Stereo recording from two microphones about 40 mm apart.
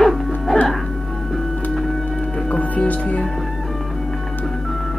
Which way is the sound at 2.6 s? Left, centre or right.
Left.